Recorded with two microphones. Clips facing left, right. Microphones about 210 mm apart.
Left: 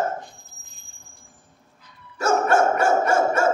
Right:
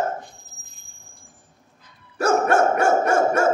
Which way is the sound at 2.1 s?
60° right (ahead or behind).